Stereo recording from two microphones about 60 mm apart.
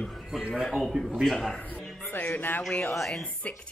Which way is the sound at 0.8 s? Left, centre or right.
Centre.